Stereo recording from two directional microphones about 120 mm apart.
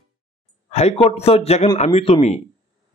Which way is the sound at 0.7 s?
65° left (ahead or behind).